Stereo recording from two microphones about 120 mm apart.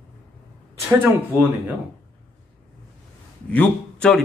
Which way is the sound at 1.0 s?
15° right (ahead or behind).